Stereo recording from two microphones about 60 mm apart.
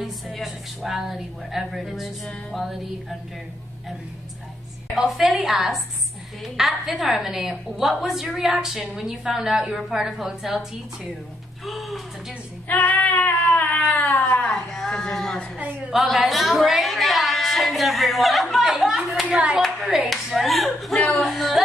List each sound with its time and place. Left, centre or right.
0.4 s speech: centre
4.9 s a woman's voice: centre
11.6 s speech: centre
12.6 s a sound: left
14.4 s a sound: centre
15.9 s a woman's voice: centre
19.2 s speech: right
19.6 s speech: centre
21.2 s a sound: centre